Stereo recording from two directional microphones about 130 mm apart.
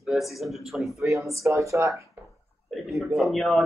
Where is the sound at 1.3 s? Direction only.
25° right (ahead or behind).